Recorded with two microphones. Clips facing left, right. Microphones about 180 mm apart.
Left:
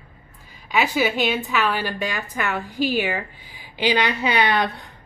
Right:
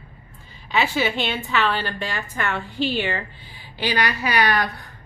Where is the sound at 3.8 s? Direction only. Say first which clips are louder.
Left 3 dB; 20° left (ahead or behind).